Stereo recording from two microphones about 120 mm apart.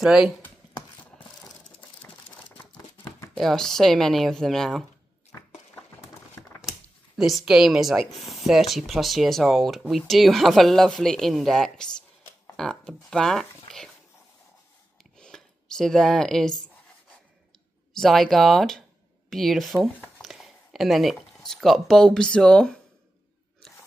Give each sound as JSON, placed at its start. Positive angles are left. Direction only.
{"t": 0.0, "sound": "speech", "side_deg": -5}
{"t": 2.0, "sound": "crumpling", "side_deg": 15}
{"t": 3.3, "sound": "speech", "side_deg": 5}
{"t": 5.3, "sound": "a sound", "side_deg": 25}
{"t": 7.2, "sound": "speech", "side_deg": 0}
{"t": 15.1, "sound": "a sound", "side_deg": 5}
{"t": 17.9, "sound": "speech", "side_deg": 0}